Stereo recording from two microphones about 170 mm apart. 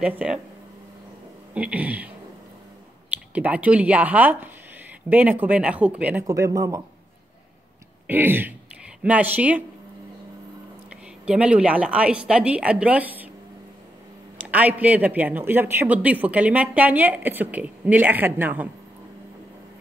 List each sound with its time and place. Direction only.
0.0 s speech: 5° right (ahead or behind)
1.5 s speech: 10° right (ahead or behind)
3.1 s speech: 10° right (ahead or behind)
6.2 s speech: 20° right (ahead or behind)
8.1 s speech: 10° right (ahead or behind)
11.2 s speech: 5° right (ahead or behind)
14.4 s speech: 10° right (ahead or behind)